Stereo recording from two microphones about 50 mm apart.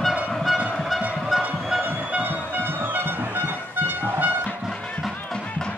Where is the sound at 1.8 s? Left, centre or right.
Right.